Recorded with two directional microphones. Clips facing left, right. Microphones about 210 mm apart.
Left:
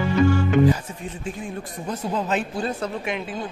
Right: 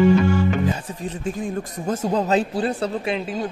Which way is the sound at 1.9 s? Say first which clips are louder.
Right 5 dB; 40° right (ahead or behind).